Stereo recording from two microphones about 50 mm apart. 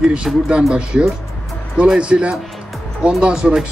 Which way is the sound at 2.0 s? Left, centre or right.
Centre.